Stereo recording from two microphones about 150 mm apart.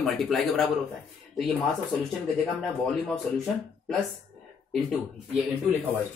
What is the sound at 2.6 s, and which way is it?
Speech, 5° left (ahead or behind).